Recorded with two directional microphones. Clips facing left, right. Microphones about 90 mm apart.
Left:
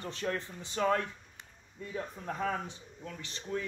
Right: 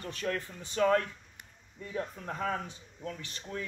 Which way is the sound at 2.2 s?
20° left (ahead or behind).